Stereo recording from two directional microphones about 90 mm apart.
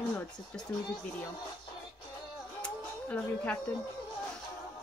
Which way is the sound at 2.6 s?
15° left (ahead or behind).